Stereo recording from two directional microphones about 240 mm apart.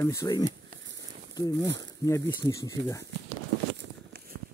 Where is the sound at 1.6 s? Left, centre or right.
Right.